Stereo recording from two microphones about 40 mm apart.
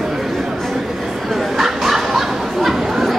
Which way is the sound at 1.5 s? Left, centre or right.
Centre.